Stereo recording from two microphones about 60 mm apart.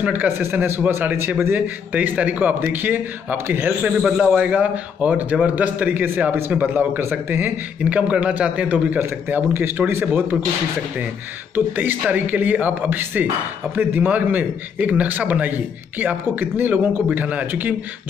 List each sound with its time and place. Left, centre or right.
0.4 s a man's voice: right
2.0 s a man's voice: right
3.8 s a man's voice: centre; by 7.0 s right
7.0 s speech: right
7.8 s a man's voice: centre; by 10.2 s right
11.5 s a man's voice: right